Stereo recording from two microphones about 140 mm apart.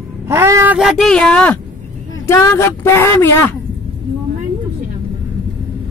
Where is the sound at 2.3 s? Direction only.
20° left (ahead or behind).